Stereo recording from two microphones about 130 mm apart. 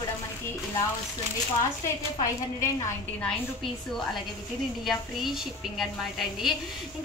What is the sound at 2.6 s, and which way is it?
Speech, 20° left (ahead or behind).